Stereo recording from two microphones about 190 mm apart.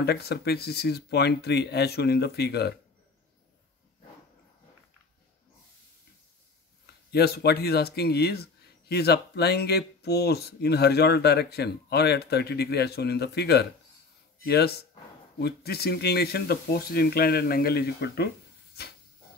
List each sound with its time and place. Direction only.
0.0 s speech: 55° left (ahead or behind)
7.1 s speech: 55° left (ahead or behind)